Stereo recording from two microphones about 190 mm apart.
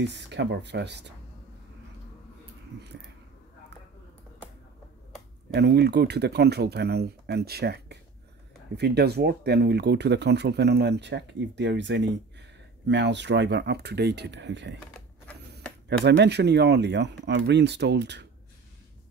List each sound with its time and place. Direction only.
0.0 s speech: 65° right (ahead or behind)
5.5 s speech: 60° right (ahead or behind)
16.0 s speech: 60° right (ahead or behind)